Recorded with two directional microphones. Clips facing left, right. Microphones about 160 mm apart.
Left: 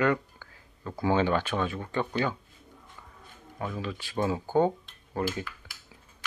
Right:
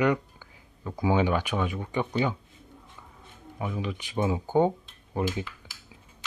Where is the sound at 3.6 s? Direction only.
15° right (ahead or behind).